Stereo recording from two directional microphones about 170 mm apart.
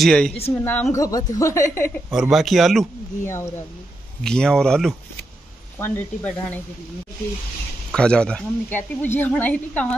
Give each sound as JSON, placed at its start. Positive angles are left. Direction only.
{"t": 0.0, "sound": "a woman's voice", "side_deg": 5}
{"t": 2.1, "sound": "speech", "side_deg": 0}
{"t": 3.3, "sound": "a woman's voice", "side_deg": 15}
{"t": 4.2, "sound": "a woman's voice", "side_deg": 5}
{"t": 7.9, "sound": "a woman's voice", "side_deg": 5}